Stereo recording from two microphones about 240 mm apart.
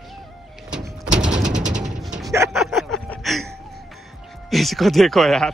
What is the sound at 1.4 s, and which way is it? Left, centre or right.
Mechanisms, right.